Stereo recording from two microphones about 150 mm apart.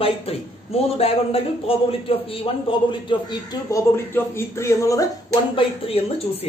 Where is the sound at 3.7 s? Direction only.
15° left (ahead or behind).